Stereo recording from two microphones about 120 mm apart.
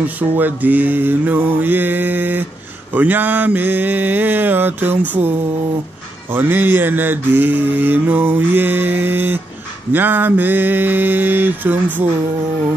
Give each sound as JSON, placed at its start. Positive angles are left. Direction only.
{"t": 0.0, "sound": "mantra", "side_deg": -15}
{"t": 6.3, "sound": "mantra", "side_deg": -15}